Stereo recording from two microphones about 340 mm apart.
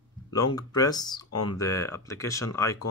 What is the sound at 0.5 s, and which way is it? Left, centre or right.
Speech, centre.